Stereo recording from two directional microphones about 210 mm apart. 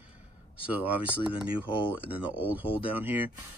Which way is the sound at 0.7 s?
10° right (ahead or behind).